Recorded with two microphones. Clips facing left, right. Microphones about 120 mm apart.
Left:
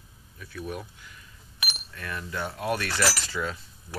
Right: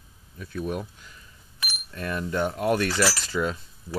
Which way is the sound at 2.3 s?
45° right (ahead or behind).